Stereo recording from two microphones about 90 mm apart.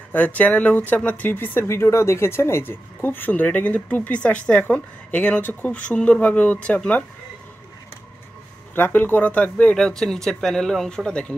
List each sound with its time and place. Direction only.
0.1 s speech: 20° left (ahead or behind)
8.7 s speech: 20° left (ahead or behind)
9.8 s speech: 5° left (ahead or behind)